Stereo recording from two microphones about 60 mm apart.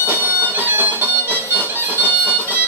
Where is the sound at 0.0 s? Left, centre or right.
Right.